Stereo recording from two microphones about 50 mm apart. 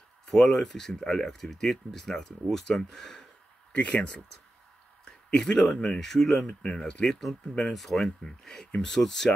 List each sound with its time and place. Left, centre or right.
0.3 s speech: centre
3.7 s speech: left
5.0 s a sound: centre
5.8 s speech: centre
6.6 s speech: centre
7.1 s speech: centre